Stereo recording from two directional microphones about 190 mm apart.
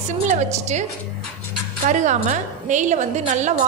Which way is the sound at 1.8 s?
40° right (ahead or behind).